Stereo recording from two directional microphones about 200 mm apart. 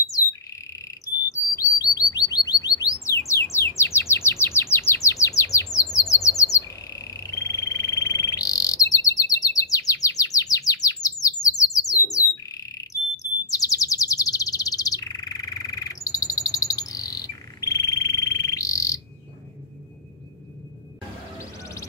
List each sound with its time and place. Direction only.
1.5 s bird: 15° left (ahead or behind)
6.5 s frog: 15° left (ahead or behind)
11.4 s bird: 15° left (ahead or behind)
21.4 s music: 15° left (ahead or behind)